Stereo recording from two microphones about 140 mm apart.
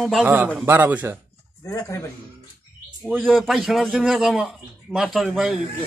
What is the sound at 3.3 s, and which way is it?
Speech, centre (ahead or behind).